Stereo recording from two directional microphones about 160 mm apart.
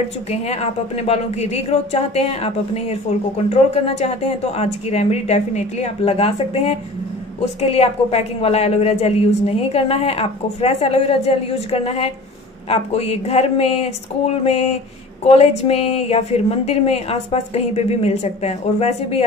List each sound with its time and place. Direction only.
0.3 s speech: 40° left (ahead or behind)
15.2 s speech: 40° left (ahead or behind)